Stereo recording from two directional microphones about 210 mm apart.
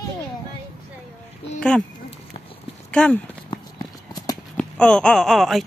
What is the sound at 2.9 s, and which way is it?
Speech, 5° left (ahead or behind).